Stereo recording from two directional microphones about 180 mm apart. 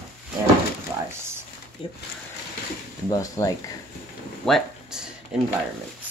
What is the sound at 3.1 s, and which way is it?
Speech, 20° left (ahead or behind).